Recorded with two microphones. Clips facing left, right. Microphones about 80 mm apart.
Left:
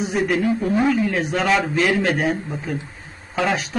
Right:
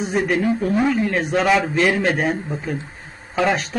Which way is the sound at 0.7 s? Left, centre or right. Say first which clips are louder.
Even; centre.